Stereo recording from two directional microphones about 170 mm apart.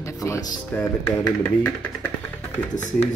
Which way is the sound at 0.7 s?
10° left (ahead or behind).